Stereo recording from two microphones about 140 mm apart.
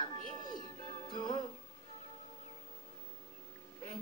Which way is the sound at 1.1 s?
35° left (ahead or behind).